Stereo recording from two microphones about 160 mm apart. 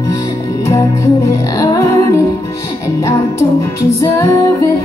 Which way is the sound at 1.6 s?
20° left (ahead or behind).